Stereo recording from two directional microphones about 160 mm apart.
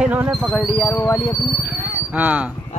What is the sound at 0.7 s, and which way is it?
Speech, 20° left (ahead or behind).